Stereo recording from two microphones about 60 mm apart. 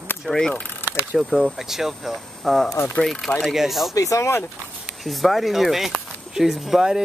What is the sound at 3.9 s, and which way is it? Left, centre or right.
Speech, left.